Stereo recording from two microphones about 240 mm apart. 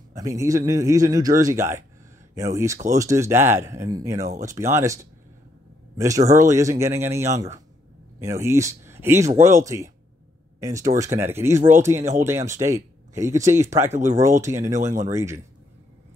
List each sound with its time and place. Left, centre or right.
0.1 s a man's voice: centre
4.2 s speech: right
4.5 s a man's voice: centre